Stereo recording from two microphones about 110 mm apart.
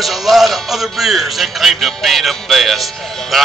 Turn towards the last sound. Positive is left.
turn(degrees=0)  # may be behind; listen again after turning